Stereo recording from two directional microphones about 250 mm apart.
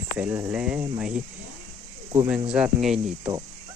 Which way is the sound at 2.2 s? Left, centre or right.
Centre.